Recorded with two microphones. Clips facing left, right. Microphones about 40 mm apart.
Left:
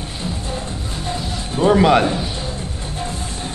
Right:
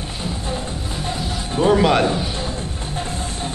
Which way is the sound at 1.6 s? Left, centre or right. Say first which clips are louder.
Left 2 dB; centre.